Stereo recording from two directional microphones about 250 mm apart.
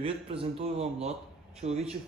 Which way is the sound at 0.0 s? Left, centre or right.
Right.